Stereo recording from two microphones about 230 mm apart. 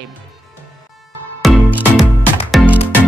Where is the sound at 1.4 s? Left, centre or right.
Centre.